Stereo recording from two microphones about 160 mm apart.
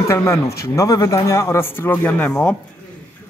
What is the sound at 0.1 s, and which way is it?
Speech, 15° left (ahead or behind).